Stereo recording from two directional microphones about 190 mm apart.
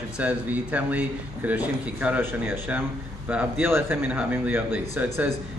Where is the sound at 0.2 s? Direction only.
5° right (ahead or behind).